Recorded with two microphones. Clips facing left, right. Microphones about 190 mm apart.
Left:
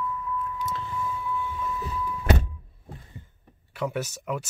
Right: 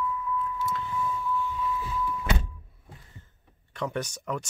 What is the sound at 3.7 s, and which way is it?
Speech, 5° left (ahead or behind).